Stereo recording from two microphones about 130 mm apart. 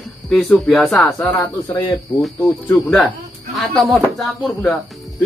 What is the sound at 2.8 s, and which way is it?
A man's voice, centre (ahead or behind).